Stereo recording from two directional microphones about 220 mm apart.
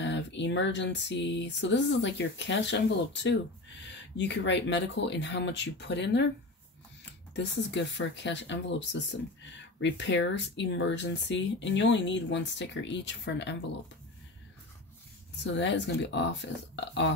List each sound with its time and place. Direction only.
0.0 s speech: 55° left (ahead or behind)
7.3 s speech: 55° left (ahead or behind)
15.4 s speech: 55° left (ahead or behind)